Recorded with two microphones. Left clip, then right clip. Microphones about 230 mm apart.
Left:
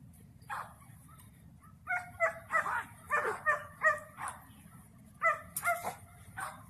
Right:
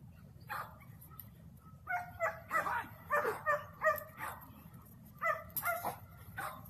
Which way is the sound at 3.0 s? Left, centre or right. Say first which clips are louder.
Left 2 dB; left.